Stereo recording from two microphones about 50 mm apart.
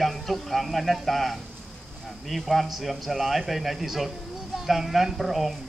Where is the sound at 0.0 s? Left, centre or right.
Centre.